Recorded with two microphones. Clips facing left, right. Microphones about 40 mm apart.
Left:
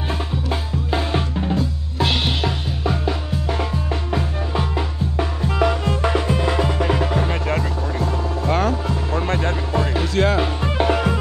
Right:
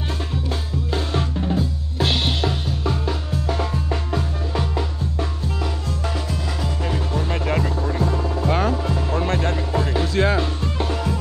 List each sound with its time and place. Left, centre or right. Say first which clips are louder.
0.8 s drum: left 2 dB; centre
2.0 s music: left 1 dB; centre
5.1 s music: left 4 dB; left
8.5 s music: left 1 dB; left
10.6 s music: left 6 dB; left